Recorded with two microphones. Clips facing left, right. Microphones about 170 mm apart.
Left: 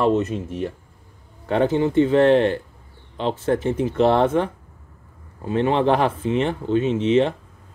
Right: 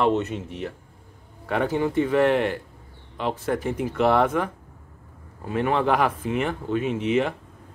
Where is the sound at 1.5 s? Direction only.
25° left (ahead or behind).